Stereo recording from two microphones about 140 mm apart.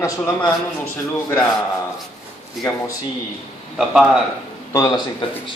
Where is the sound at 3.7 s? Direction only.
5° right (ahead or behind).